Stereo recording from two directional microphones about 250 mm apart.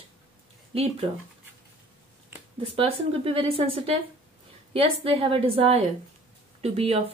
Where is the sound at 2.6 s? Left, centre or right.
Right.